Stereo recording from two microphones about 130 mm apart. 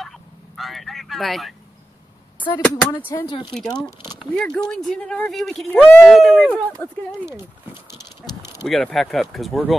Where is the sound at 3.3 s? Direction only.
40° left (ahead or behind).